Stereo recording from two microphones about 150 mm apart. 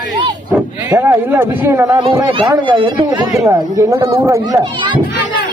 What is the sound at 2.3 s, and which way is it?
Speech, 30° right (ahead or behind).